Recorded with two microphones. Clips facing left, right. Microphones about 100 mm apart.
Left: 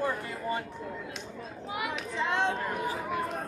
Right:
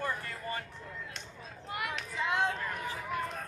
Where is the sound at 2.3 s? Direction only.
30° left (ahead or behind).